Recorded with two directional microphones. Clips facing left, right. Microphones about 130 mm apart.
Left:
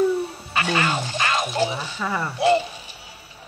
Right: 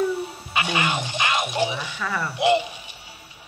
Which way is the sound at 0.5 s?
15° right (ahead or behind).